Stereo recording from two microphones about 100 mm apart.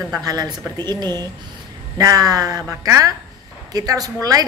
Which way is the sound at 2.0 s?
40° right (ahead or behind).